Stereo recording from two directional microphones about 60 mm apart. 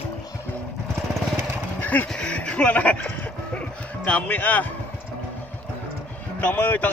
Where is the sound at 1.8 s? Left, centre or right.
Left.